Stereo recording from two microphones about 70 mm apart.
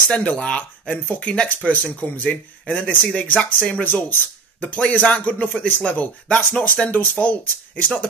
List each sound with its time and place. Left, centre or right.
0.2 s speech: centre